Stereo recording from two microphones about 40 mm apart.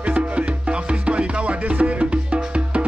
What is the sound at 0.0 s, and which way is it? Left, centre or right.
Music, right.